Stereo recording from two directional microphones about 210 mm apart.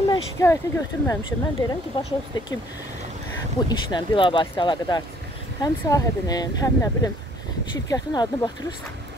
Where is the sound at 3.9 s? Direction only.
25° left (ahead or behind).